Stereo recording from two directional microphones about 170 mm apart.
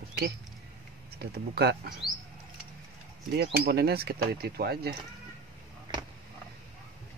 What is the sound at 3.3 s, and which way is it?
Speech, 65° right (ahead or behind).